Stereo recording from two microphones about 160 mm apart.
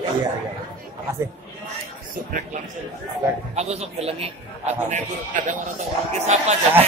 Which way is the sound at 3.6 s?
40° right (ahead or behind).